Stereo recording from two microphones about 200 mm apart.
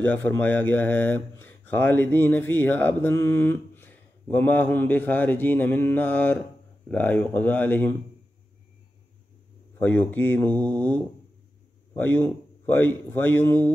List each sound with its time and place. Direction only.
0.0 s speech: 10° left (ahead or behind)
9.8 s speech: 10° left (ahead or behind)